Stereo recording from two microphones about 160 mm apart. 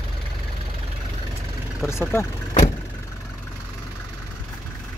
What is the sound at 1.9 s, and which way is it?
Speech, 15° left (ahead or behind).